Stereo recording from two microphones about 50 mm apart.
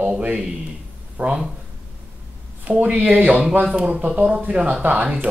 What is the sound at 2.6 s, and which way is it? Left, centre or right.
Speech, right.